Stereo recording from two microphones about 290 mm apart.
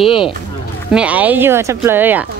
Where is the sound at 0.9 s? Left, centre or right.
Centre.